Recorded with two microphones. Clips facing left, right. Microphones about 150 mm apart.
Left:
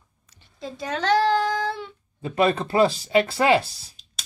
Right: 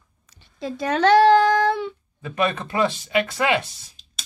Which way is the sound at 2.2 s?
30° left (ahead or behind).